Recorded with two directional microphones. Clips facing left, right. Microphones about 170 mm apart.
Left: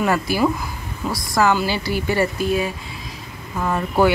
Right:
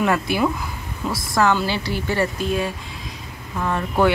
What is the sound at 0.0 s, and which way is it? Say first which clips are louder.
A woman's voice: left 1 dB; centre (ahead or behind).